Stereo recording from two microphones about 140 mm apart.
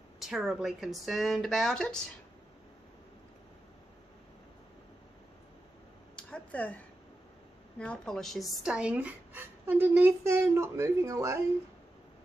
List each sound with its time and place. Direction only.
0.2 s speech: centre (ahead or behind)
6.1 s a sound: 10° left (ahead or behind)
7.8 s speech: 5° left (ahead or behind); by 11.4 s 20° right (ahead or behind)